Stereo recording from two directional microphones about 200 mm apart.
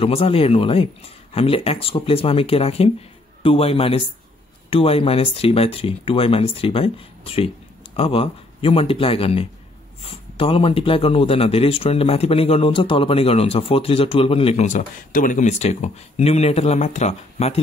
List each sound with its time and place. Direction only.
0.0 s a man's voice: 30° left (ahead or behind)